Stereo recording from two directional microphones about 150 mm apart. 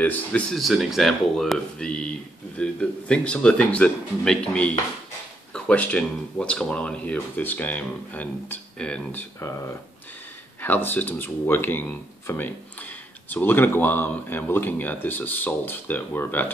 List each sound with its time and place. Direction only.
0.0 s speech: 10° left (ahead or behind)
9.4 s speech: 20° left (ahead or behind)